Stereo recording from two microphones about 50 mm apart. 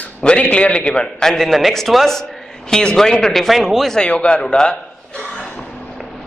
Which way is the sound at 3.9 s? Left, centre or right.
Centre.